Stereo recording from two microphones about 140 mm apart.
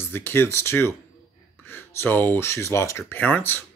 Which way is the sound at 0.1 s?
15° left (ahead or behind).